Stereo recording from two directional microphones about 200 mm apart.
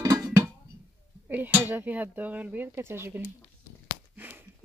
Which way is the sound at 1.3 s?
10° right (ahead or behind).